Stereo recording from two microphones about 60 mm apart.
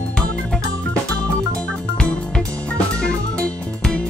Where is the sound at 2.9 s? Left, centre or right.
Centre.